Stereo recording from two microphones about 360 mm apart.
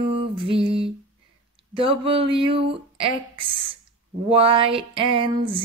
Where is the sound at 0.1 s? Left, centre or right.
Centre.